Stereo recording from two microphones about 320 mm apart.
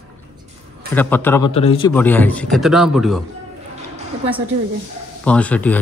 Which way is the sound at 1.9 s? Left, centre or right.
Centre.